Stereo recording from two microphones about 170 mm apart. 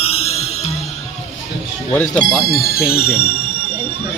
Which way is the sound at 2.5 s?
65° left (ahead or behind).